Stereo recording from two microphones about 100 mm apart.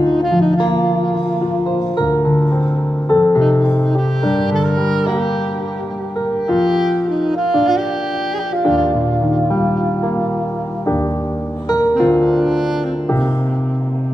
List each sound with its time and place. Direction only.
0.1 s music: centre (ahead or behind)
0.6 s music: 55° left (ahead or behind)
2.1 s music: 25° left (ahead or behind)
4.3 s music: centre (ahead or behind)
6.5 s music: centre (ahead or behind)
9.5 s music: 25° left (ahead or behind)
12.0 s music: 35° left (ahead or behind)
12.3 s music: centre (ahead or behind)